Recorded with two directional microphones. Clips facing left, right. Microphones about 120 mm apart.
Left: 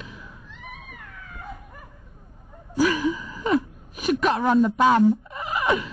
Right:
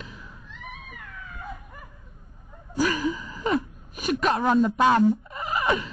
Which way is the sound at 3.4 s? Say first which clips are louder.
Left 3 dB; 5° left (ahead or behind).